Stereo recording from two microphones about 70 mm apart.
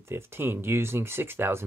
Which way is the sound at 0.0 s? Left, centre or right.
Right.